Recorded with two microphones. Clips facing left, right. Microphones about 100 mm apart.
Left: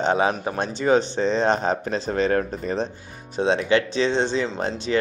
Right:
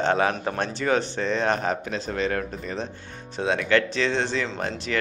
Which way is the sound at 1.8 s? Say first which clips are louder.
Left 4 dB; 35° left (ahead or behind).